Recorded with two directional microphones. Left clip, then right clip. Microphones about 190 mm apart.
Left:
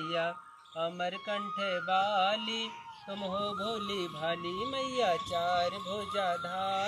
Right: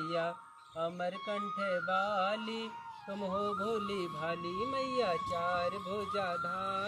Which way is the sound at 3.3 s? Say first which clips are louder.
Even; 10° right (ahead or behind).